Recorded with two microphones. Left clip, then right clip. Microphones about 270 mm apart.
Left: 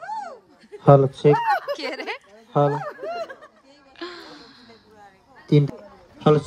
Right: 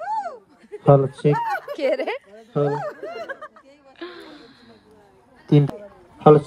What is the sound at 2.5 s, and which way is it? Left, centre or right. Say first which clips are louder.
Speech: left 3 dB; left.